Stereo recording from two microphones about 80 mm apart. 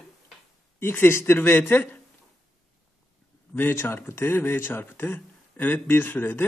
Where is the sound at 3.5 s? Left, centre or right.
Left.